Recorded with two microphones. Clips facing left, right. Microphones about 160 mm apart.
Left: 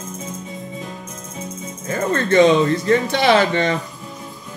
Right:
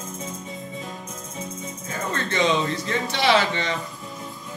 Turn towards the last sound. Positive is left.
turn(degrees=50)  # may be behind; listen again after turning